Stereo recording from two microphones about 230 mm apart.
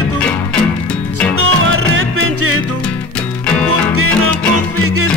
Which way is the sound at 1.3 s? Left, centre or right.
Right.